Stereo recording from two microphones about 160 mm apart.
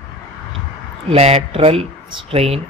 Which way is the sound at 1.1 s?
40° right (ahead or behind).